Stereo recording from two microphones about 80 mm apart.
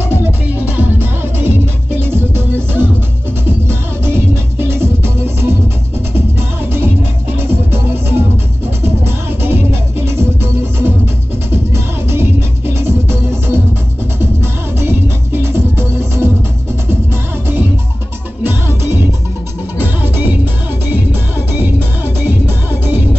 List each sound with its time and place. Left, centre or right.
0.1 s music: right
4.1 s music: right
7.3 s music: right